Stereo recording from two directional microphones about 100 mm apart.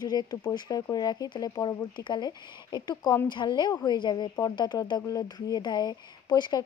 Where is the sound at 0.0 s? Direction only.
40° left (ahead or behind).